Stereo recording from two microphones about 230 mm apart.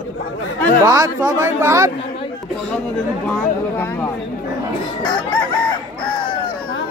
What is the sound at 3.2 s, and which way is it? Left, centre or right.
Speech, centre.